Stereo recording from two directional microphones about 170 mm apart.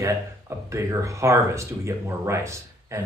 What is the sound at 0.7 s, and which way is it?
Speech, 15° right (ahead or behind).